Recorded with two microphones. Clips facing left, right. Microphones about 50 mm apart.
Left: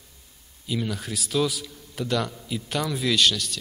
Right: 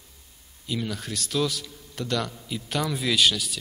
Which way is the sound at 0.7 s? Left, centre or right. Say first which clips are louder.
Left 2 dB; centre.